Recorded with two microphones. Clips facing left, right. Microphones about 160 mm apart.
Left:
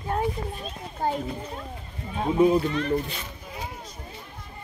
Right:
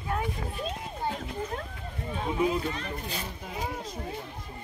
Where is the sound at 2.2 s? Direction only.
35° left (ahead or behind).